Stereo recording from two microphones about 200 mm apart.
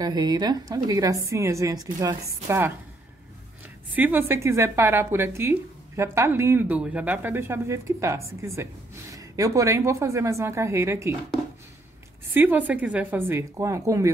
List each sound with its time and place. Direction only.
0.0 s a woman's voice: 20° right (ahead or behind)
3.9 s a woman's voice: 10° right (ahead or behind)
12.4 s a woman's voice: 10° right (ahead or behind)